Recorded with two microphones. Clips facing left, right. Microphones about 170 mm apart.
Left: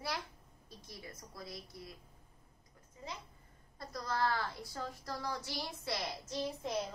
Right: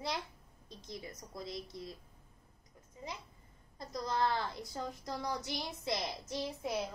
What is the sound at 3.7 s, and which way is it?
A woman's voice, 20° right (ahead or behind).